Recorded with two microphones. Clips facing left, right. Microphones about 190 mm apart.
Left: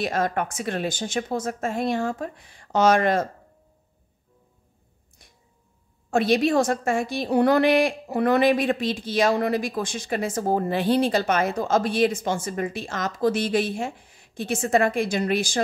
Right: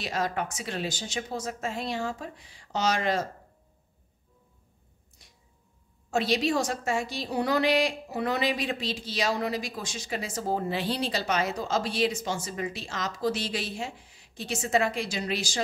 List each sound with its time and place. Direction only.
0.0 s a woman's voice: 50° left (ahead or behind)
5.2 s a sound: 55° left (ahead or behind)
6.0 s a woman's voice: 55° left (ahead or behind)